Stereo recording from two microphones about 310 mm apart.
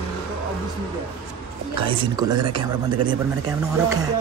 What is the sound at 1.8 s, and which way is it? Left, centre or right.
Speech, centre.